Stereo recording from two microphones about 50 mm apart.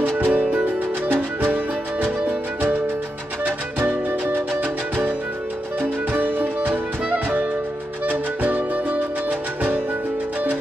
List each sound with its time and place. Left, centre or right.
0.2 s music: right
5.8 s music: right